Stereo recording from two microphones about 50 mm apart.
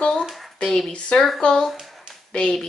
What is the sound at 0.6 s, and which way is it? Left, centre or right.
Speech, centre.